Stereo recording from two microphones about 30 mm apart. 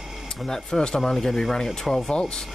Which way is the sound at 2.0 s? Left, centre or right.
Left.